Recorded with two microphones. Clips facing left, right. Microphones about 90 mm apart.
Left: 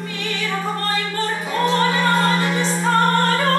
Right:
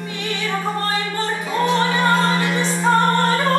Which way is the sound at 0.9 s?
20° right (ahead or behind).